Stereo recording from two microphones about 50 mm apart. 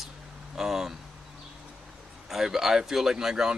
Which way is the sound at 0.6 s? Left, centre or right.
Centre.